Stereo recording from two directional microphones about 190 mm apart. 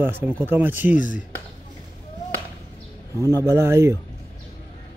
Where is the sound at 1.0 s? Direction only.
45° left (ahead or behind).